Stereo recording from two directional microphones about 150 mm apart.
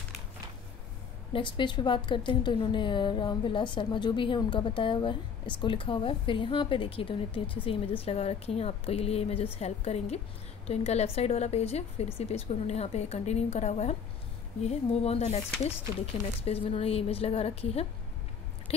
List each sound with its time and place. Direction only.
1.3 s a woman's voice: 30° left (ahead or behind)
16.4 s a woman's voice: 40° left (ahead or behind)